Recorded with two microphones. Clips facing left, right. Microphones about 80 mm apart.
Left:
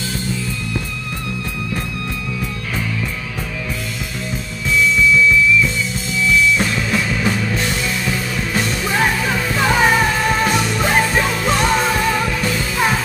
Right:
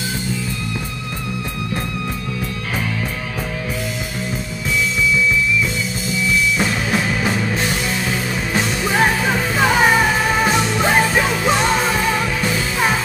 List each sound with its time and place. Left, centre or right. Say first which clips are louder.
6.5 s music: left 1 dB; centre
9.6 s music: even; centre
10.6 s music: right 1 dB; right
10.9 s music: even; centre
11.7 s music: left 1 dB; centre